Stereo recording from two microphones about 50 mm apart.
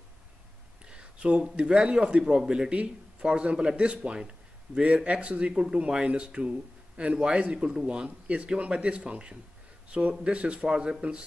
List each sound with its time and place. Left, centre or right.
0.8 s speech: right